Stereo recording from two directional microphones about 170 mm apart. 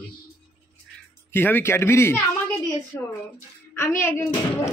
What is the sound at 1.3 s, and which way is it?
A man's voice, 10° left (ahead or behind).